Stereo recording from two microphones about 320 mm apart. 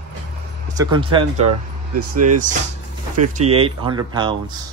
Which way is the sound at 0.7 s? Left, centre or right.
Centre.